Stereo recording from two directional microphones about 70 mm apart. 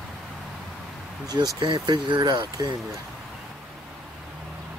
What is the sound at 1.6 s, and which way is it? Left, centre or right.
Speech, right.